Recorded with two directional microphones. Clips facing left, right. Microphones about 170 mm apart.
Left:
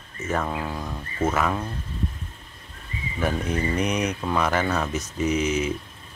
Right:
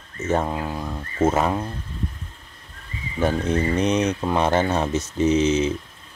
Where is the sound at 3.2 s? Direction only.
25° right (ahead or behind).